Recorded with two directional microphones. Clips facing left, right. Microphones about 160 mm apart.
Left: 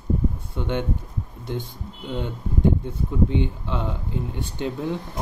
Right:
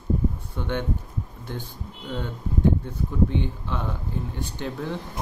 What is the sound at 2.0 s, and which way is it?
Speech, 15° left (ahead or behind).